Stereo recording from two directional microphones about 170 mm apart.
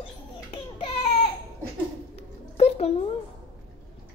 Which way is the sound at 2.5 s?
35° left (ahead or behind).